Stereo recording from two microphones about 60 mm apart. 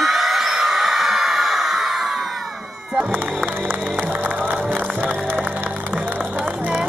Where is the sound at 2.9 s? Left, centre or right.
Centre.